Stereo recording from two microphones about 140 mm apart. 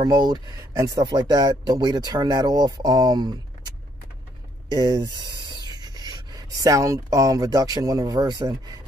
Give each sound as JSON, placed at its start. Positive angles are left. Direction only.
{"t": 0.0, "sound": "speech", "side_deg": -30}